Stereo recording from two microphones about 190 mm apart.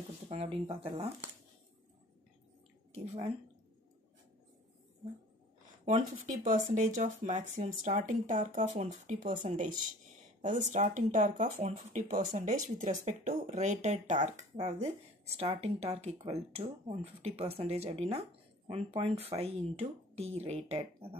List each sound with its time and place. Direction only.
0.3 s speech: 30° right (ahead or behind)
5.9 s speech: 40° right (ahead or behind)